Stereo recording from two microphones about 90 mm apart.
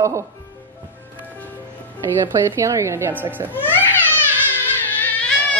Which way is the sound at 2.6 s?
35° right (ahead or behind).